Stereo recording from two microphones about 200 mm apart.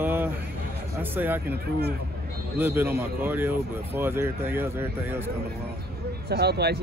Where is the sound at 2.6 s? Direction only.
10° right (ahead or behind).